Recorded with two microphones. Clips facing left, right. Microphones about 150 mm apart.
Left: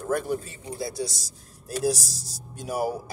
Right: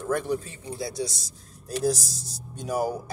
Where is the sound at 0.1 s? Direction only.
Centre (ahead or behind).